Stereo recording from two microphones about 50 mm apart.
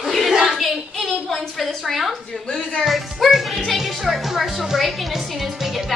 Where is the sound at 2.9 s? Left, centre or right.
Centre.